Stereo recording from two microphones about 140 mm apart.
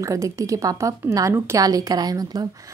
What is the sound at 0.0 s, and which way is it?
A woman's voice, 25° right (ahead or behind).